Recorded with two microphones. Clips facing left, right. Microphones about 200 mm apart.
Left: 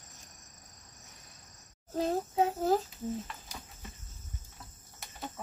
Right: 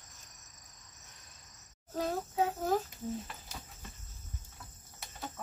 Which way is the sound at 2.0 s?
25° left (ahead or behind).